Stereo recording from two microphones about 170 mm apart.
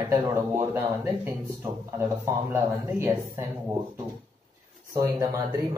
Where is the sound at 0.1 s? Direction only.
15° right (ahead or behind).